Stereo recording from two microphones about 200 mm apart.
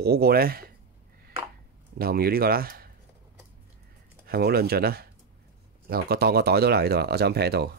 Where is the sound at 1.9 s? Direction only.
50° right (ahead or behind).